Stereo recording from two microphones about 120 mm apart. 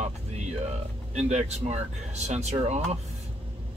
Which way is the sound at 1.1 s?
70° right (ahead or behind).